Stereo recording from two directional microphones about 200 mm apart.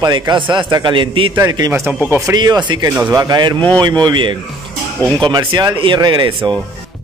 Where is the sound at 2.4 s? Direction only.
20° right (ahead or behind).